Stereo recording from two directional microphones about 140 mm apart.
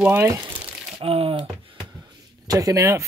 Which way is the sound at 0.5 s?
45° right (ahead or behind).